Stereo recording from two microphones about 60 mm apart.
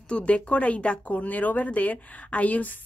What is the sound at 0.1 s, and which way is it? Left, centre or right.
Speech, left.